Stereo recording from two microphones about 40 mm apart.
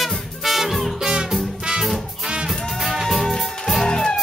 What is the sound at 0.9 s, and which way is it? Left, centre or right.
Music, centre.